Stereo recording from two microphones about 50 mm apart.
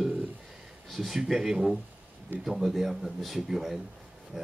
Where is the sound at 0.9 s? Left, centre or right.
Centre.